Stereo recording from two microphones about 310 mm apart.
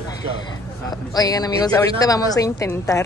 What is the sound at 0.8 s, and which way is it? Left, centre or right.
Speech, centre.